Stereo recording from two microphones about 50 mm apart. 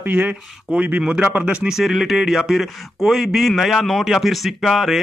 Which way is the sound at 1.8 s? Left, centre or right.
Centre.